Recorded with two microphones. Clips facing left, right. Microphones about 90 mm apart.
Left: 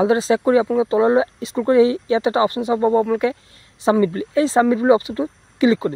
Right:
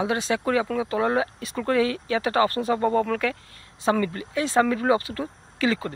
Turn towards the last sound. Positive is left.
turn(degrees=20)  # may be behind; listen again after turning